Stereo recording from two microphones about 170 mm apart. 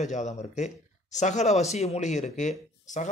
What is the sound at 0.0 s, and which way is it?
Speech, 45° left (ahead or behind).